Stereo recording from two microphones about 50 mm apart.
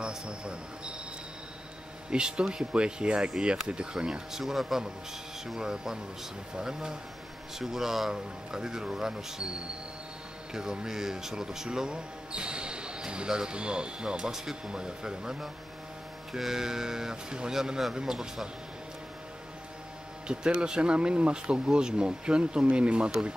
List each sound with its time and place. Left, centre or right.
0.0 s speech: centre
2.0 s speech: centre
4.4 s speech: centre
16.3 s speech: centre
20.3 s speech: centre